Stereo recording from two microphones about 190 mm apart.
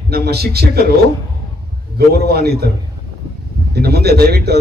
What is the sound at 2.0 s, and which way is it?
Speech, 55° right (ahead or behind).